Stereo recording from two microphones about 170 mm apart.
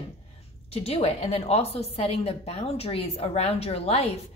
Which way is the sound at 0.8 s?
35° left (ahead or behind).